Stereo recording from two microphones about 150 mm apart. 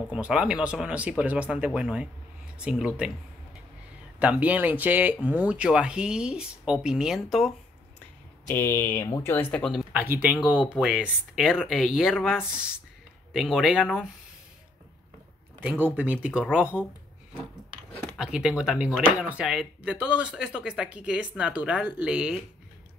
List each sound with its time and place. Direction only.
0.1 s speech: 5° right (ahead or behind)
4.2 s speech: 10° right (ahead or behind)
8.5 s speech: 15° left (ahead or behind); by 14.0 s centre (ahead or behind)
15.6 s speech: 10° right (ahead or behind)
18.1 s speech: 5° right (ahead or behind)